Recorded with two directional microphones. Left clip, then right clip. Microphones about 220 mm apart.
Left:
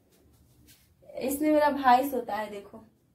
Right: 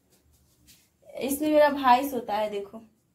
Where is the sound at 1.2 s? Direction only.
25° right (ahead or behind).